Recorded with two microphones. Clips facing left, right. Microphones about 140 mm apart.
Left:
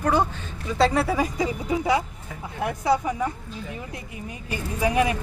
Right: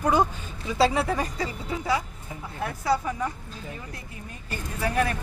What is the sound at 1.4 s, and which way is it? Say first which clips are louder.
Speech: left 5 dB; 20° left (ahead or behind).